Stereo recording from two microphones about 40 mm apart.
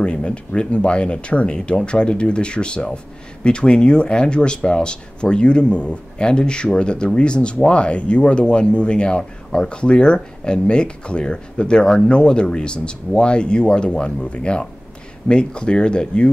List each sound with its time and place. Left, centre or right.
0.0 s speech: left